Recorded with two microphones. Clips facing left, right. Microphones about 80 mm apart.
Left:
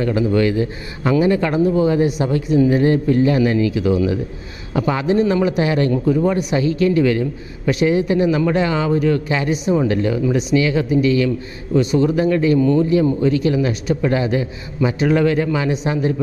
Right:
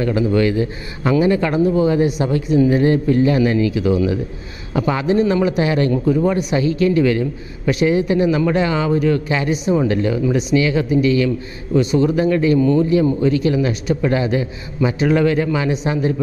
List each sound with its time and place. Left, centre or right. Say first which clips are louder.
0.0 s a man's voice: even; centre